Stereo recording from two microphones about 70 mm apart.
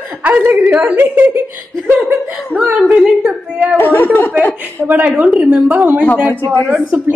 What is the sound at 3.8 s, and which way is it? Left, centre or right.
Speech, left.